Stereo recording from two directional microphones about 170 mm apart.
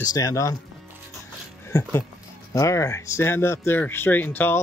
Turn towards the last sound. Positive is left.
turn(degrees=10)  # may be behind; listen again after turning